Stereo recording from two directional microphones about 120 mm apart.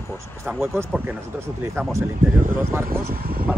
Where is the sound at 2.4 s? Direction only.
90° right.